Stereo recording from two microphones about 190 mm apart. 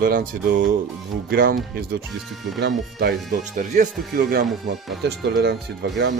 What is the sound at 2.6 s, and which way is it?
Speech, 55° right (ahead or behind).